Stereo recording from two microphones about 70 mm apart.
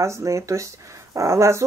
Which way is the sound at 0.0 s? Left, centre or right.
Right.